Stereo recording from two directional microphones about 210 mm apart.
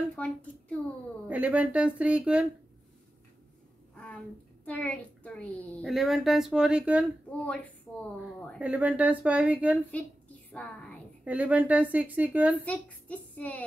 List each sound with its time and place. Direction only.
0.1 s a sound: 5° left (ahead or behind)
1.2 s a woman's voice: 5° right (ahead or behind)
3.9 s a sound: 5° left (ahead or behind)
4.6 s a child's voice: 5° left (ahead or behind)
7.2 s a woman's voice: 5° left (ahead or behind)
8.5 s a woman's voice: 5° right (ahead or behind)
9.8 s a sound: 5° left (ahead or behind)
11.2 s a woman's voice: 5° right (ahead or behind)
12.6 s a woman's voice: 5° left (ahead or behind)